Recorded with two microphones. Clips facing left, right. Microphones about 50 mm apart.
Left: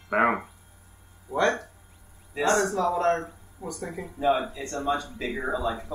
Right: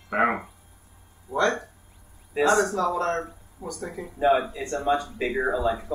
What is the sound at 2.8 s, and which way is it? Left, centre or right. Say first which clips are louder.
Speech: left 1 dB; centre.